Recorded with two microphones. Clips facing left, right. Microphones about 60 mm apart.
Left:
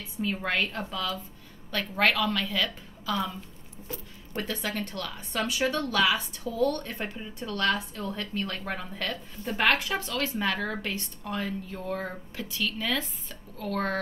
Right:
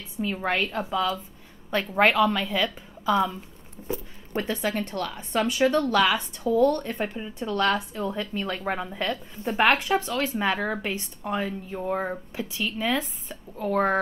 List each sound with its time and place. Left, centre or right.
0.2 s a woman's voice: centre; by 5.4 s right
5.4 s a woman's voice: centre
6.5 s a woman's voice: right
6.8 s a woman's voice: centre